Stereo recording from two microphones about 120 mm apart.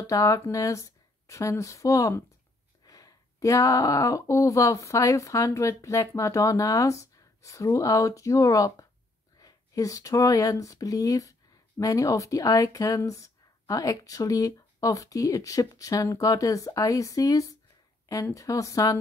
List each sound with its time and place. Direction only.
0.0 s speech: 25° left (ahead or behind)